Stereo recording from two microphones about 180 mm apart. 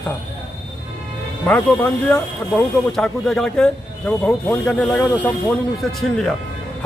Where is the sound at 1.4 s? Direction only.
5° left (ahead or behind).